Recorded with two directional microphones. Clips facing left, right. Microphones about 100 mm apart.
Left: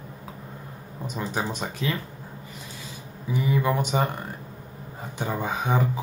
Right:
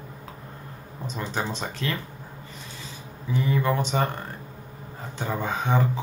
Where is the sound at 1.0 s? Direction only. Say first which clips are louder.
Left 1 dB; 10° left (ahead or behind).